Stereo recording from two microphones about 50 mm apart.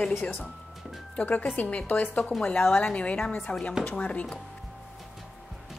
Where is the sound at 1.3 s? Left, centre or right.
Left.